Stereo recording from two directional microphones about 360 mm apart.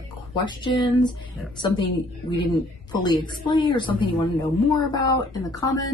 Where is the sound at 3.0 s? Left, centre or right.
Centre.